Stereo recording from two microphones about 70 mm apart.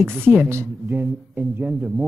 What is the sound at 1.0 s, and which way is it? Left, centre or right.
Speech, right.